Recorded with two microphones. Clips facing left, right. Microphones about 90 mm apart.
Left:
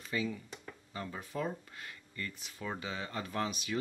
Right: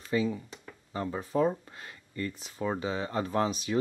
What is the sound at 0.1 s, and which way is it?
Speech, 30° right (ahead or behind).